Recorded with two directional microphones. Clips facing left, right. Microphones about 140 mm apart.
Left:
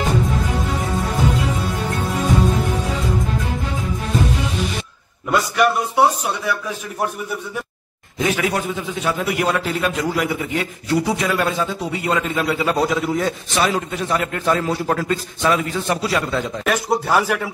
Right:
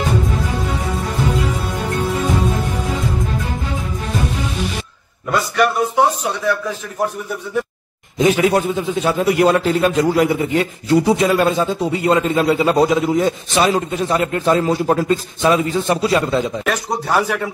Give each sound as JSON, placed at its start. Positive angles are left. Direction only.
{"t": 5.6, "sound": "speech", "side_deg": 10}
{"t": 8.2, "sound": "a man's voice", "side_deg": -25}
{"t": 16.6, "sound": "speech", "side_deg": 0}